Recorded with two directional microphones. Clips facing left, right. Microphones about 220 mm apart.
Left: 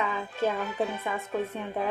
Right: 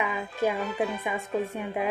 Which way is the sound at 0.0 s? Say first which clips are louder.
Right 1 dB; 15° right (ahead or behind).